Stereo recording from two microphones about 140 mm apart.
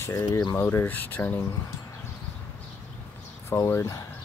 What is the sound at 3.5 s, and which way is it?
Speech, 15° left (ahead or behind).